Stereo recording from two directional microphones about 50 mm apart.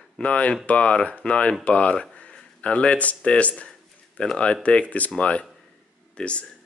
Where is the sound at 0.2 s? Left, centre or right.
Left.